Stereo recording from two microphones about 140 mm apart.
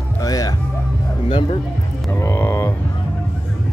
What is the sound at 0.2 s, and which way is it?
Music, 25° left (ahead or behind).